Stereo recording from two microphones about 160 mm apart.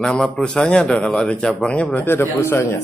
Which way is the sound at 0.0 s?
5° left (ahead or behind).